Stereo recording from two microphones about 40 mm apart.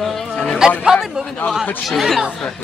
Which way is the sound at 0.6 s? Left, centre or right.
Centre.